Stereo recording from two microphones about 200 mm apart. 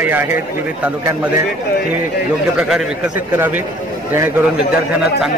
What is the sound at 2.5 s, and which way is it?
Speech, 5° right (ahead or behind).